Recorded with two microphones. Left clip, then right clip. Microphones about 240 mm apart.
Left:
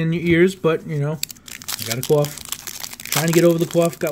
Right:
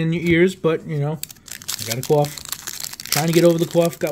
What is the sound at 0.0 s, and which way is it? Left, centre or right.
Speech, centre.